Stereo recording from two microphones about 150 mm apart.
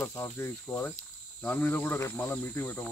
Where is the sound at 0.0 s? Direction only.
15° left (ahead or behind).